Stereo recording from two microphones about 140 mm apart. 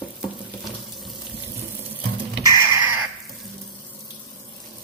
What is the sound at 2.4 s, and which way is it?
Crow, 20° right (ahead or behind).